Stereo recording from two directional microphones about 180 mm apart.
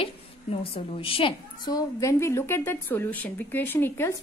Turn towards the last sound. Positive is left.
turn(degrees=15)  # may be behind; listen again after turning